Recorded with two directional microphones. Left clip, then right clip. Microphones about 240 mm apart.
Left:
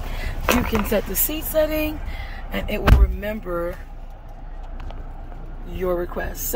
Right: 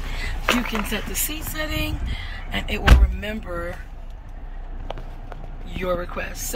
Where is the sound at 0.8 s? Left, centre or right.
Left.